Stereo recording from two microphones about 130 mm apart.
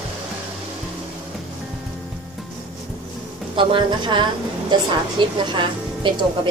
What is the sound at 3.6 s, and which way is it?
A woman's voice, 40° right (ahead or behind).